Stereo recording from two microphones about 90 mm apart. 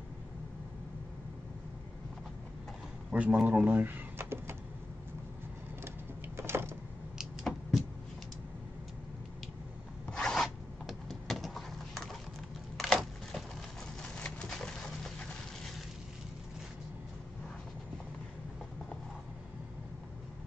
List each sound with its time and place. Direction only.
3.1 s speech: 15° right (ahead or behind)
6.3 s power windows: 25° right (ahead or behind)
10.1 s zipper: 5° left (ahead or behind)
12.7 s a sound: 5° left (ahead or behind)
14.0 s pigeon: 10° left (ahead or behind)